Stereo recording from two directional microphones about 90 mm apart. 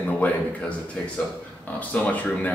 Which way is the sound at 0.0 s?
15° left (ahead or behind).